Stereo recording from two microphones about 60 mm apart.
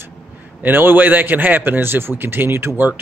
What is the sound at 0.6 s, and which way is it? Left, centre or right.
A man's voice, right.